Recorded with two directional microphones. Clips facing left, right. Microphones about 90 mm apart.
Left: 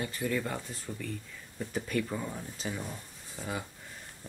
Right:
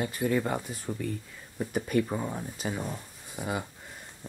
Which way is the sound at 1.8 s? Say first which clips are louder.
Right 5 dB; 25° right (ahead or behind).